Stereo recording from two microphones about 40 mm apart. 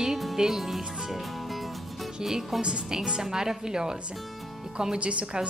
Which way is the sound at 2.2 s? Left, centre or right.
Centre.